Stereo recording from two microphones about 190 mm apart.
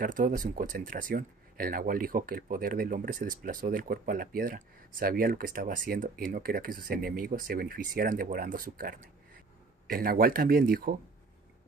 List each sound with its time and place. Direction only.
0.0 s speech: 45° right (ahead or behind)